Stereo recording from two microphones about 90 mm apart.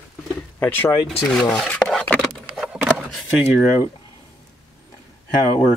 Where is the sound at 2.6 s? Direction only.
10° right (ahead or behind).